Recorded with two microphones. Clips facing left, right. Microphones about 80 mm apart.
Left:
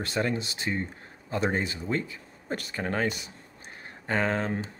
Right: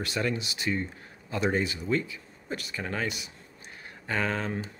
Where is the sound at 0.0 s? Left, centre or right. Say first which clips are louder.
Left 1 dB; left.